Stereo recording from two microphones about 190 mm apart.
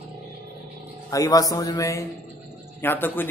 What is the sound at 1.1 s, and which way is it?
A man's voice, 20° left (ahead or behind).